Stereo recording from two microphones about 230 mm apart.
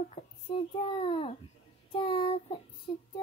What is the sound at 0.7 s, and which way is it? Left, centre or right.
A child's voice, left.